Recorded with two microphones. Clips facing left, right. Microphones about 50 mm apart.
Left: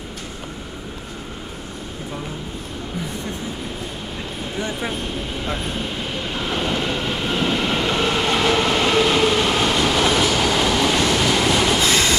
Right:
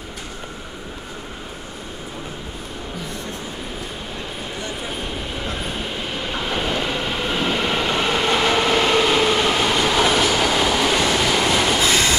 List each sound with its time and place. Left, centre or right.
4.9 s speech: centre
5.6 s train: centre